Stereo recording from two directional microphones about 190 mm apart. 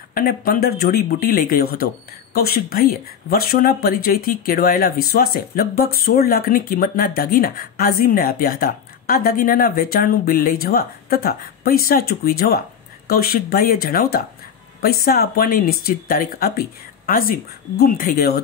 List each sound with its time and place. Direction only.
0.1 s speech: 50° left (ahead or behind)